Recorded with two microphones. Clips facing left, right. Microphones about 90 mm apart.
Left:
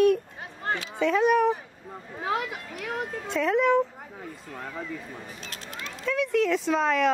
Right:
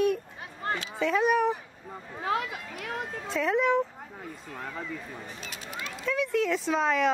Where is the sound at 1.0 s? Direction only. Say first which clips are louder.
Left 3 dB; centre (ahead or behind).